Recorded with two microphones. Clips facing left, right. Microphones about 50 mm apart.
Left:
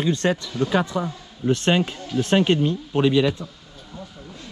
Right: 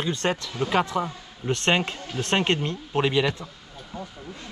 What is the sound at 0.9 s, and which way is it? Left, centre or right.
Speech, right.